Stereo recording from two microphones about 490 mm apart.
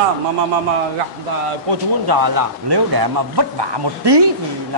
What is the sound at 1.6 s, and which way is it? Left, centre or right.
Speech, right.